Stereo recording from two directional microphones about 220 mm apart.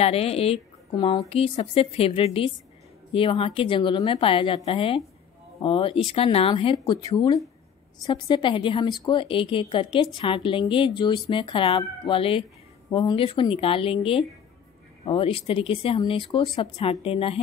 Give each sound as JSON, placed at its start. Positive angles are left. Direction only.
{"t": 0.0, "sound": "speech", "side_deg": 25}